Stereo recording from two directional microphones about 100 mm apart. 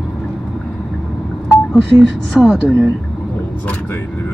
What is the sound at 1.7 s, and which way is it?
Speech, centre (ahead or behind).